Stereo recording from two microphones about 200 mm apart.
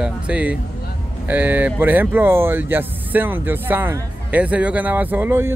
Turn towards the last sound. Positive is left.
turn(degrees=-10)  # may be behind; listen again after turning